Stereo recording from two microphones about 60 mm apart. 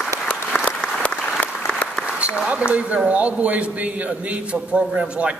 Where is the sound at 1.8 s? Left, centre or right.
Left.